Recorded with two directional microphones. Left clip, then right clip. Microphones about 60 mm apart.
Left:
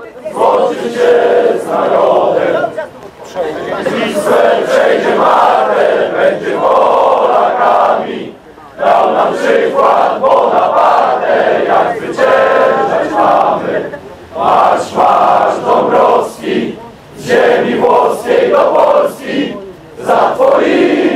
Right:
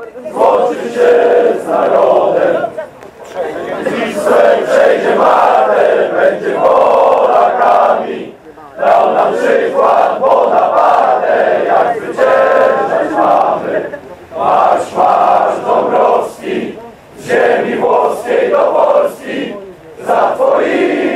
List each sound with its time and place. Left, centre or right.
0.6 s chant: centre
3.3 s chatter: centre
4.3 s chant: centre
5.2 s crowd: centre
10.6 s battle cry: centre
17.3 s crowd: centre
18.0 s chant: centre